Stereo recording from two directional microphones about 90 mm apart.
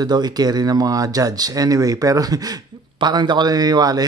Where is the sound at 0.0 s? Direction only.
50° right (ahead or behind).